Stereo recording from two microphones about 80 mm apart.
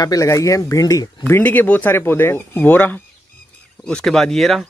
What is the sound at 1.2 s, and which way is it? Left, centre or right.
Speech, left.